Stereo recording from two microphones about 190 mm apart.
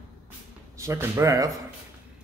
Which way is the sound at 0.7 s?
15° right (ahead or behind).